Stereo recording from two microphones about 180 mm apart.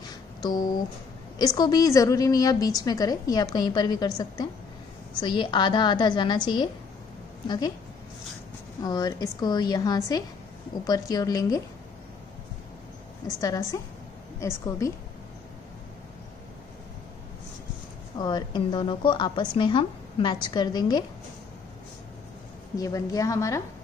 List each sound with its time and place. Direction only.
0.4 s a woman's voice: 20° left (ahead or behind)
8.8 s a woman's voice: 20° left (ahead or behind)
13.4 s a woman's voice: 20° left (ahead or behind)
18.1 s a woman's voice: 25° left (ahead or behind)
22.8 s a woman's voice: 20° left (ahead or behind)